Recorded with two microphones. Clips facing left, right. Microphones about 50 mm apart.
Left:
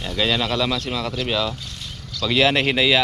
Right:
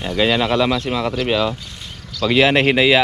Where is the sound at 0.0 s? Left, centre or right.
Right.